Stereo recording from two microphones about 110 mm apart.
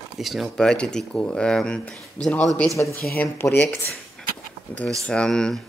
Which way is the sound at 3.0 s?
20° left (ahead or behind).